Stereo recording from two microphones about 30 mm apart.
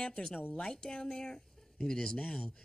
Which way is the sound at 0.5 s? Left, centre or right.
Left.